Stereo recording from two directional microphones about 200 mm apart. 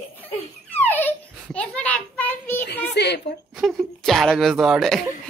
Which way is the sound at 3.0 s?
55° left (ahead or behind).